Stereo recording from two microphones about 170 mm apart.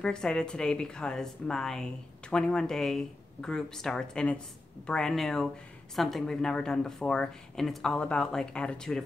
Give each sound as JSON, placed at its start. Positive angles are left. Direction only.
{"t": 0.0, "sound": "speech", "side_deg": 5}